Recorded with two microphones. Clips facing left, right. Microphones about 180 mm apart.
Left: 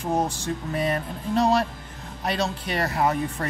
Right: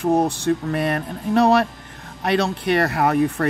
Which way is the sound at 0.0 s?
65° right (ahead or behind).